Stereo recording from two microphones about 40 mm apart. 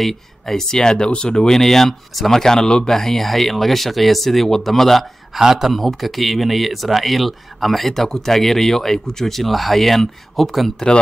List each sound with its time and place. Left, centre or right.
0.0 s speech: centre
1.6 s speech: centre
5.4 s a man's voice: centre